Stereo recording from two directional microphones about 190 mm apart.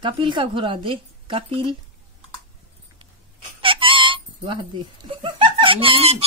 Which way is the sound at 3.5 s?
25° right (ahead or behind).